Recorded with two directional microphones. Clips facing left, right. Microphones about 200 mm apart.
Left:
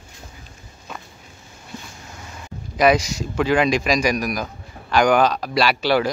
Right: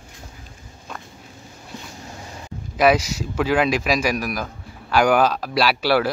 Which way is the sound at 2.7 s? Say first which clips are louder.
Even; 5° right (ahead or behind).